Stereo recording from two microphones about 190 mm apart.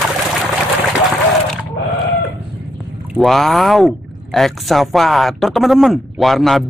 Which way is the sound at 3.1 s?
Centre (ahead or behind).